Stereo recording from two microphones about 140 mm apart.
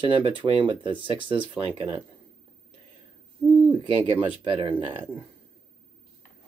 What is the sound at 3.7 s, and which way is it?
Speech, 35° right (ahead or behind).